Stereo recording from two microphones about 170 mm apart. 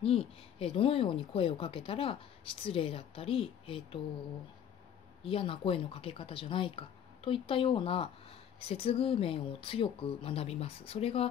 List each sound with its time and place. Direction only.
0.0 s speech: 35° left (ahead or behind)
5.2 s speech: 35° left (ahead or behind)